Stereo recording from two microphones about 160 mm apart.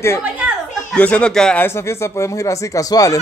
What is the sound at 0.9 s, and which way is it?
Speech, 10° left (ahead or behind).